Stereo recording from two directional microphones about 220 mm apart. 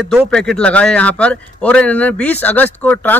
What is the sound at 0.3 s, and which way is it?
A man's voice, 5° left (ahead or behind).